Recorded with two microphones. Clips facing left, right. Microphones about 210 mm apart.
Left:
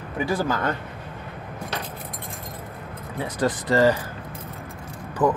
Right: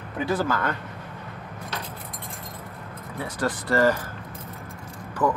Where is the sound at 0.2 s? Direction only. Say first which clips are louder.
Left 1 dB; 10° left (ahead or behind).